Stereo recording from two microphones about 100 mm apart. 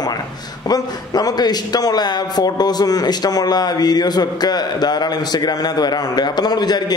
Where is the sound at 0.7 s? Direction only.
40° left (ahead or behind).